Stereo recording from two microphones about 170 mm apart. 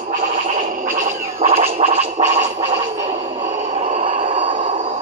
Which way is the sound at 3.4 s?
40° right (ahead or behind).